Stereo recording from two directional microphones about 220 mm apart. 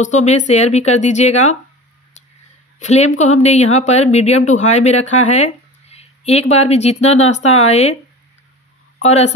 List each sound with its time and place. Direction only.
0.0 s speech: 30° left (ahead or behind)
2.8 s speech: 30° left (ahead or behind)
9.0 s a woman's voice: 30° left (ahead or behind)